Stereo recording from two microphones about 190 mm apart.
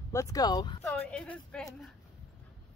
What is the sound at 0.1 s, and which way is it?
Speech, 15° left (ahead or behind).